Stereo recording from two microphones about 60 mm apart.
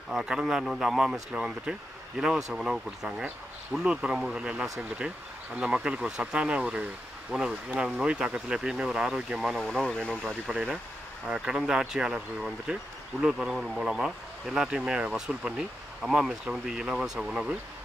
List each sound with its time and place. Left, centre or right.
0.1 s speech: centre
9.6 s speech: centre
10.5 s speech: centre
13.7 s speech: centre